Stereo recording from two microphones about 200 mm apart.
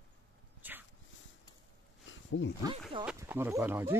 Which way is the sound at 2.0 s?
70° left (ahead or behind).